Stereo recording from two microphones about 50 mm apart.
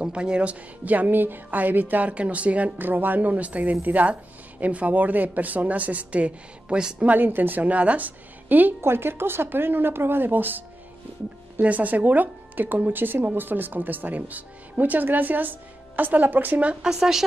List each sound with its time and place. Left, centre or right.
0.0 s speech: right
7.1 s speech: right
8.8 s a woman's voice: right
11.6 s speech: right
16.8 s speech: centre